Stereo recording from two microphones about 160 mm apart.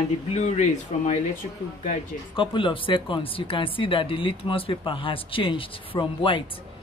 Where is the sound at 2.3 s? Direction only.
30° left (ahead or behind).